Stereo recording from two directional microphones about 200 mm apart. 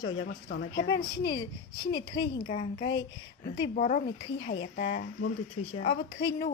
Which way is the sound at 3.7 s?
40° left (ahead or behind).